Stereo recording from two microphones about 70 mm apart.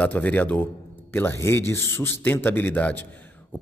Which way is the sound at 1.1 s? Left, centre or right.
Left.